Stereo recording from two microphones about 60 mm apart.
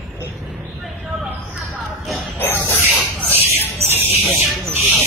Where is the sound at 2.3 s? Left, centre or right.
Left.